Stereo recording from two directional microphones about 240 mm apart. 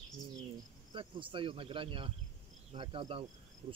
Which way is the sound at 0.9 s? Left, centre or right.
Right.